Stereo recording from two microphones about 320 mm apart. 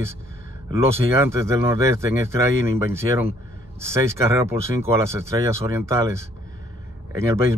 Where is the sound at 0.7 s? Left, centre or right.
Centre.